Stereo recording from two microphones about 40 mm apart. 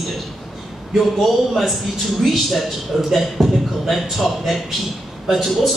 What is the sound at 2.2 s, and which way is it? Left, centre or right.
A man's voice, centre.